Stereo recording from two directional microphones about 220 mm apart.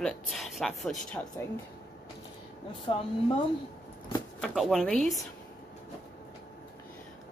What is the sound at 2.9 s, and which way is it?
Speech, 20° left (ahead or behind).